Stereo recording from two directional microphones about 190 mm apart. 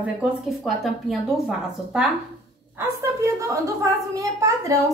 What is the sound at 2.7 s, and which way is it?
A child's voice, 15° right (ahead or behind).